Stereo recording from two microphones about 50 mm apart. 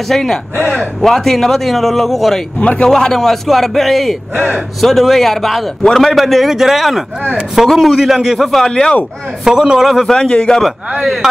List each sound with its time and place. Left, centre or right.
0.1 s a man's voice: centre
0.6 s a man's voice: right
1.0 s a man's voice: centre
2.6 s speech: left
2.9 s a man's voice: centre
8.4 s a man's voice: centre
9.4 s a man's voice: centre
9.8 s a man's voice: centre
10.1 s a man's voice: centre